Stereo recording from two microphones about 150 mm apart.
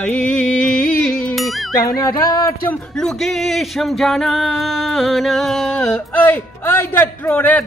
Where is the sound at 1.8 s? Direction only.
25° left (ahead or behind).